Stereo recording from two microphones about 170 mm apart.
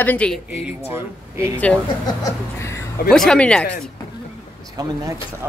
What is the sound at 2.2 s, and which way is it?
Laughter, 15° left (ahead or behind).